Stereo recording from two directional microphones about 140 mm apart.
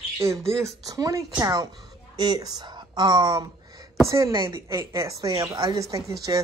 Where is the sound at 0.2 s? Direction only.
20° right (ahead or behind).